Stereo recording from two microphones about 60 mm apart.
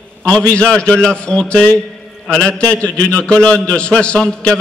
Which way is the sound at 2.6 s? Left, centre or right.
Left.